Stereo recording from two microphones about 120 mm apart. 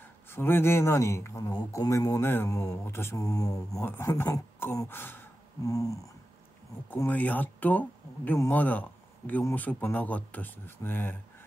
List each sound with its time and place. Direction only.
0.0 s speech: 20° left (ahead or behind)
7.1 s speech: 15° left (ahead or behind)